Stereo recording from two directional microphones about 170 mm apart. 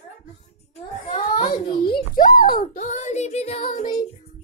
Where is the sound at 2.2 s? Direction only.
55° left (ahead or behind).